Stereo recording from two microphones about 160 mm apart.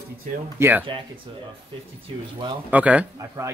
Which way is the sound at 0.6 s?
15° right (ahead or behind).